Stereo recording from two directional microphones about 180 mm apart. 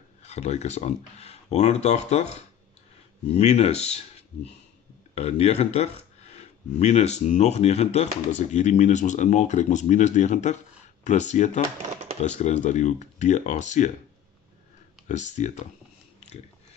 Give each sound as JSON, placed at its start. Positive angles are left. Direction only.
{"t": 0.2, "sound": "speech", "side_deg": 35}
{"t": 5.1, "sound": "speech", "side_deg": 35}
{"t": 15.0, "sound": "speech", "side_deg": 40}